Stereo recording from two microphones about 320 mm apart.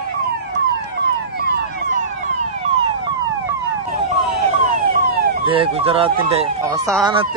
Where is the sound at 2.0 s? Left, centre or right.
Right.